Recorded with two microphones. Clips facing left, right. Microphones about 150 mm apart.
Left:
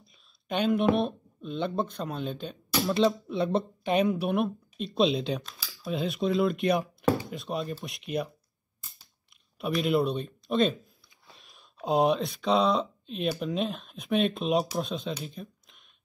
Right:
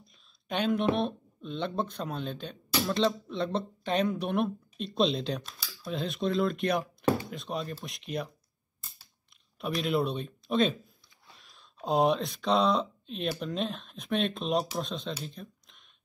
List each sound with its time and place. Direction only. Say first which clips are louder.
0.0 s speech: right 1 dB; centre (ahead or behind)
9.8 s speech: left 3 dB; centre (ahead or behind)
11.3 s a sound: left 2 dB; 20° left (ahead or behind)
11.8 s speech: left 1 dB; centre (ahead or behind)